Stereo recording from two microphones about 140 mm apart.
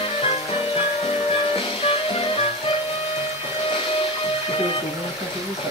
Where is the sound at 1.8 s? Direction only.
45° left (ahead or behind).